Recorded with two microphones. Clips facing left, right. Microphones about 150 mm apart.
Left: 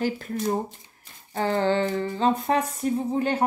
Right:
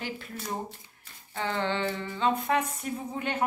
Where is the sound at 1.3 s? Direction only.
40° left (ahead or behind).